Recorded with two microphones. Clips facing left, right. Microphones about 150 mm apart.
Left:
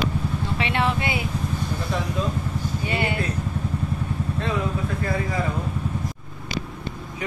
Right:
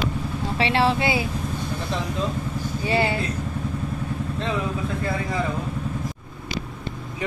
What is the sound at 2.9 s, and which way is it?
Speech, 30° right (ahead or behind).